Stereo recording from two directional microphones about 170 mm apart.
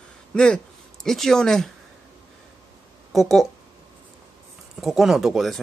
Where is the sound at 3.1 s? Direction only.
Centre (ahead or behind).